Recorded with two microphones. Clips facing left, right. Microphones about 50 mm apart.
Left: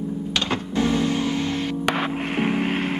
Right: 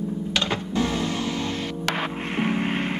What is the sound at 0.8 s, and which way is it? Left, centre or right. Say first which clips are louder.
Music: left 4 dB; centre.